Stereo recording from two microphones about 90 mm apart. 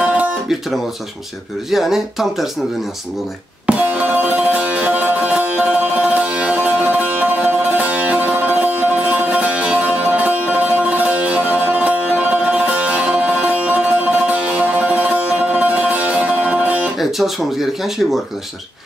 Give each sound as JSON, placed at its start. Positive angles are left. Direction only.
{"t": 0.0, "sound": "music", "side_deg": -10}
{"t": 1.7, "sound": "speech", "side_deg": -5}
{"t": 3.6, "sound": "music", "side_deg": -15}
{"t": 17.0, "sound": "speech", "side_deg": 0}